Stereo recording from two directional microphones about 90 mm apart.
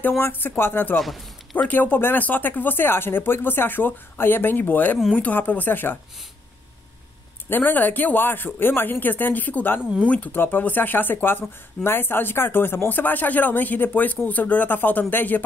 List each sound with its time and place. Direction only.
0.2 s speech: 25° left (ahead or behind)
0.9 s a man's voice: centre (ahead or behind)
1.6 s speech: 20° left (ahead or behind)
7.4 s speech: 20° left (ahead or behind)